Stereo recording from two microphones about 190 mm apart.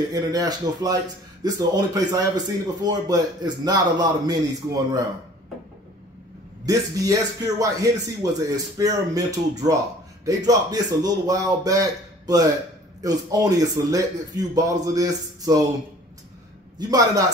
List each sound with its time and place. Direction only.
0.1 s speech: 20° right (ahead or behind)
6.6 s speech: 20° right (ahead or behind)
16.7 s a man's voice: 20° right (ahead or behind)